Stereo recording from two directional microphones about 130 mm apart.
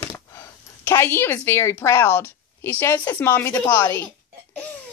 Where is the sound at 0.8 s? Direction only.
15° left (ahead or behind).